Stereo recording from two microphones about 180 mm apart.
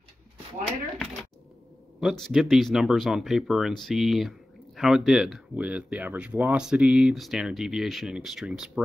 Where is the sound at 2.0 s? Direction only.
Centre (ahead or behind).